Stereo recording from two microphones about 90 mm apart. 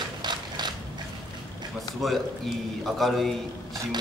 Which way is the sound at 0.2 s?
55° right (ahead or behind).